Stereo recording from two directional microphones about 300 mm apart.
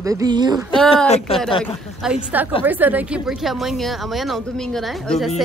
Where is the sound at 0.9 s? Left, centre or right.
Left.